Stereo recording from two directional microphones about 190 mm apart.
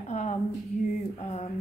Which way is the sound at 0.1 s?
40° left (ahead or behind).